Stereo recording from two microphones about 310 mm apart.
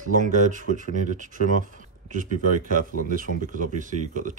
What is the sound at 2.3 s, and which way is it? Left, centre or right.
Speech, right.